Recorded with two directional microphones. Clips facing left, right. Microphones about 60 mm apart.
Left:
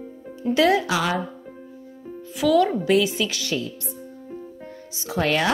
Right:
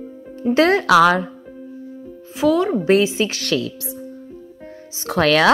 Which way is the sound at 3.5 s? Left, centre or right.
Right.